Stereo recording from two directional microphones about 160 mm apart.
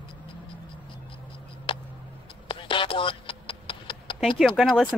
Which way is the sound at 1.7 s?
35° left (ahead or behind).